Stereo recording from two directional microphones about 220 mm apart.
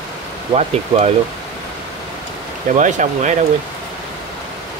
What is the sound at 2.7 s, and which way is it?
Speech, 35° right (ahead or behind).